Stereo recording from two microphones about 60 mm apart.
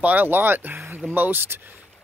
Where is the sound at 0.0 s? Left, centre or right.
Right.